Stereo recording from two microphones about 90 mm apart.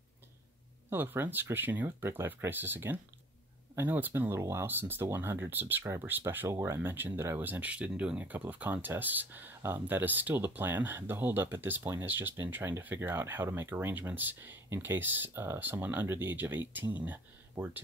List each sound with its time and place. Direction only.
0.8 s speech: 25° right (ahead or behind)